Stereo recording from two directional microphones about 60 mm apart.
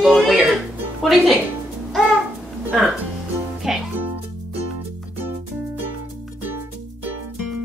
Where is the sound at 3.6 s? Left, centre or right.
Centre.